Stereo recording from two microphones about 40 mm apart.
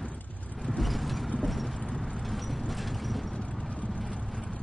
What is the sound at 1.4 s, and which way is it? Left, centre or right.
Clip-clop, centre.